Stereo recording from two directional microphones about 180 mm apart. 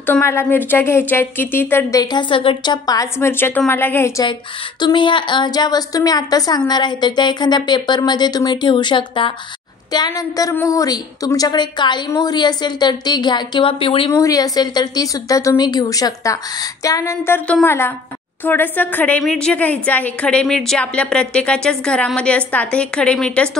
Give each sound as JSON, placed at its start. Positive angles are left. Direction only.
{"t": 0.0, "sound": "a woman's voice", "side_deg": 10}
{"t": 4.2, "sound": "a woman's voice", "side_deg": 25}
{"t": 14.1, "sound": "a woman's voice", "side_deg": 20}